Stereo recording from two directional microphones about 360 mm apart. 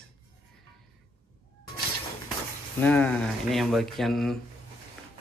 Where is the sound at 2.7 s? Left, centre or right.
Centre.